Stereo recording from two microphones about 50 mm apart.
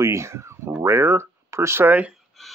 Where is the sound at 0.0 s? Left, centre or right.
Right.